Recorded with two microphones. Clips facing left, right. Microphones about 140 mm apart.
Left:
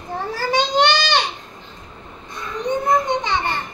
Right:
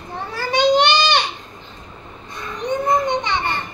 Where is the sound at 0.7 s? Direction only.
20° right (ahead or behind).